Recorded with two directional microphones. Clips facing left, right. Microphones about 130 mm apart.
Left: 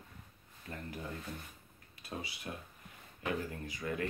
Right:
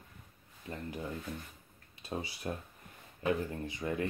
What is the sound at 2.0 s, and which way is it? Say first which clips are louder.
Speech: right 5 dB; 30° right (ahead or behind).